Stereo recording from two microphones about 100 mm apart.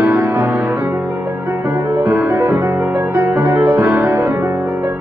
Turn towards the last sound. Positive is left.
turn(degrees=-30)  # may be behind; listen again after turning